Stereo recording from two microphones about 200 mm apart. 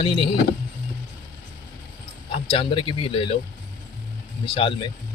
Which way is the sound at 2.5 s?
25° left (ahead or behind).